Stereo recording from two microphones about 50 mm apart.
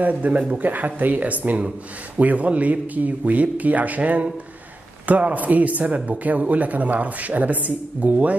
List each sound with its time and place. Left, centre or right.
0.0 s a man's voice: right